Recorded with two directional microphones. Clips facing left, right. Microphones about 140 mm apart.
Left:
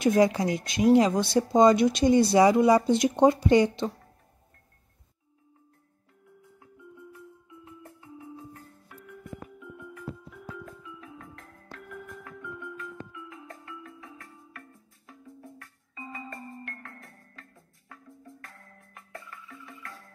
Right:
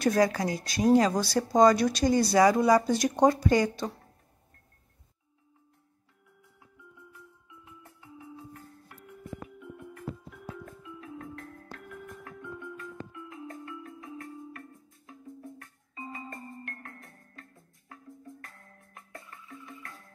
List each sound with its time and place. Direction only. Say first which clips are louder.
0.0 s speech: left 3 dB; 20° left (ahead or behind)
9.6 s music: left 1 dB; 50° right (ahead or behind)
16.3 s music: left 1 dB; 45° right (ahead or behind)
18.4 s music: left 1 dB; 45° left (ahead or behind)